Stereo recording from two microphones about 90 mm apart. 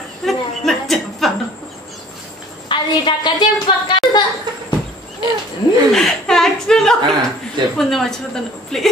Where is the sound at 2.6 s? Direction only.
60° left (ahead or behind).